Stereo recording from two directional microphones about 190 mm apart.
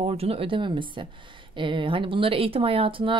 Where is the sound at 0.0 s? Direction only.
30° right (ahead or behind).